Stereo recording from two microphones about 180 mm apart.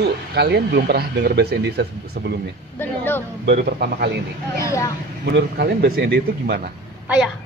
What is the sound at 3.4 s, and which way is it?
Speech, 65° right (ahead or behind).